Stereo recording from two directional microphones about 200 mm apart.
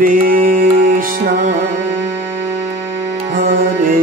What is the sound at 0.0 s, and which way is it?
Music, 45° right (ahead or behind).